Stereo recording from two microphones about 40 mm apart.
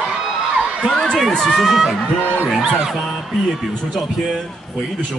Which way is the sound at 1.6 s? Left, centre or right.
Centre.